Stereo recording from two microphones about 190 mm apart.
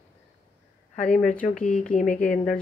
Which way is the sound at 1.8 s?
40° left (ahead or behind).